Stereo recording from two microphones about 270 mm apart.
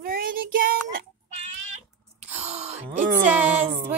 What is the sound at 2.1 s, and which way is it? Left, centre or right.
Gasp, right.